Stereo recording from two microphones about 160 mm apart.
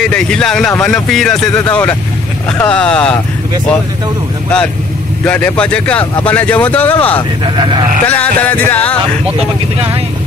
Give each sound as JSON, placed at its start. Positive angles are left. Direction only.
{"t": 0.0, "sound": "speech", "side_deg": 5}
{"t": 5.2, "sound": "speech", "side_deg": 10}
{"t": 7.4, "sound": "speech", "side_deg": -30}
{"t": 8.1, "sound": "speech", "side_deg": 10}